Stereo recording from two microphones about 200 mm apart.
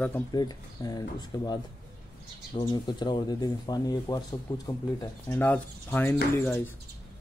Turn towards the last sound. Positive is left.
turn(degrees=10)  # may be behind; listen again after turning